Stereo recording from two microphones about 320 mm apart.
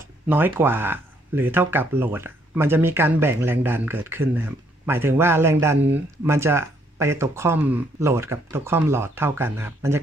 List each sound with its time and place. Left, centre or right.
0.3 s speech: centre